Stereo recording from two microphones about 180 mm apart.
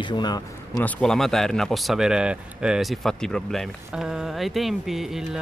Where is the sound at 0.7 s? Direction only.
5° left (ahead or behind).